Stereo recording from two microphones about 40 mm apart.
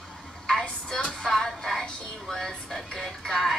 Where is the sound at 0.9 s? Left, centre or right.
Centre.